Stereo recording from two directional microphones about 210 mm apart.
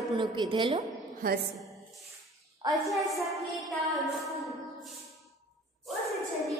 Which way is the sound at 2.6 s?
20° right (ahead or behind).